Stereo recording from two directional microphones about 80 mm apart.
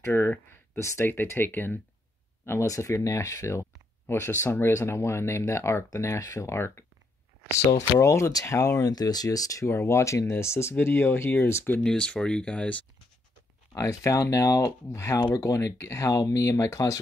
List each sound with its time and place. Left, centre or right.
0.0 s speech: left
2.4 s speech: left
8.0 s speech: left
11.8 s speech: centre
13.7 s speech: left